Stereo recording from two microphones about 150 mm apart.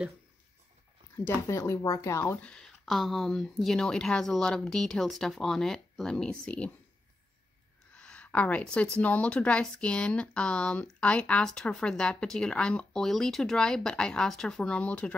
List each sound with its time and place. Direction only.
1.1 s speech: 20° left (ahead or behind)
2.4 s speech: 5° left (ahead or behind)
7.9 s speech: 10° left (ahead or behind)